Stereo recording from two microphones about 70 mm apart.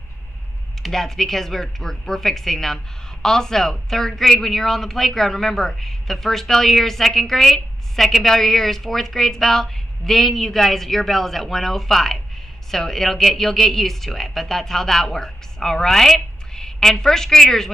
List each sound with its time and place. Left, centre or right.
0.8 s speech: centre